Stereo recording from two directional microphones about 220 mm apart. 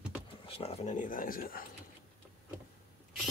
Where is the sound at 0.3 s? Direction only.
25° left (ahead or behind); by 1.7 s 40° left (ahead or behind).